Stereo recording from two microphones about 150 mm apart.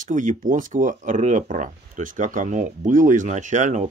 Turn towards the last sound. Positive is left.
turn(degrees=-50)  # may be behind; listen again after turning